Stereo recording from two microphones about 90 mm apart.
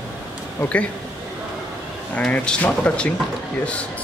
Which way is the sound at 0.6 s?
15° left (ahead or behind).